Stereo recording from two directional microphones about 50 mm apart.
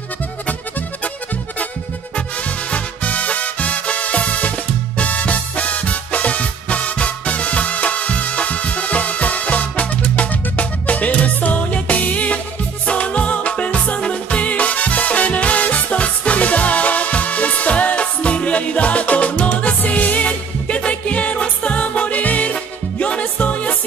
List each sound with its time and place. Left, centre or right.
2.7 s music: left